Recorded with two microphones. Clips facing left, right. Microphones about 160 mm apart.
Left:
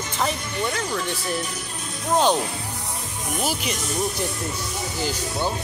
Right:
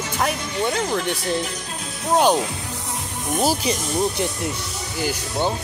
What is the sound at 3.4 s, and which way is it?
Speech, 35° right (ahead or behind).